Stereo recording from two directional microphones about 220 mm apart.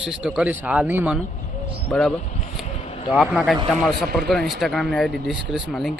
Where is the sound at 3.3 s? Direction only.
Centre (ahead or behind).